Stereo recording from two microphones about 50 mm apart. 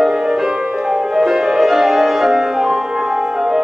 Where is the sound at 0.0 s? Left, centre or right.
Centre.